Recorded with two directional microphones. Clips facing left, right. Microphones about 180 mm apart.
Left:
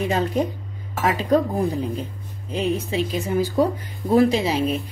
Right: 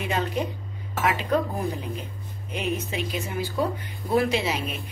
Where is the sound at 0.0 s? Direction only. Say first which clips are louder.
Left 5 dB; 35° left (ahead or behind).